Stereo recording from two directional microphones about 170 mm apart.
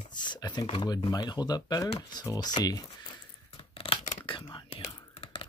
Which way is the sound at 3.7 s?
30° left (ahead or behind).